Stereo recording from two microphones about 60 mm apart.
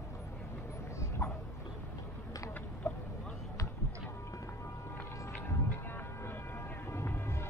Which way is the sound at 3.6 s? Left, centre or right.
Left.